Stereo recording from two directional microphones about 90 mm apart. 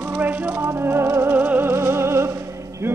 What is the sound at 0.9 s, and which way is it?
Music, 25° right (ahead or behind).